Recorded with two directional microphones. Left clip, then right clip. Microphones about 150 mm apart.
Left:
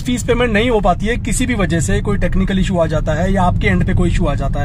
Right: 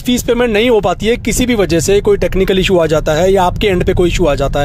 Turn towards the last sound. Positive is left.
turn(degrees=-35)  # may be behind; listen again after turning